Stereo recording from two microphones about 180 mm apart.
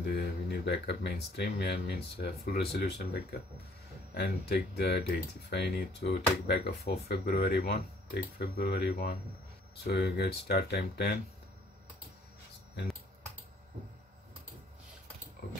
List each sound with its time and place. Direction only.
0.1 s speech: 65° left (ahead or behind)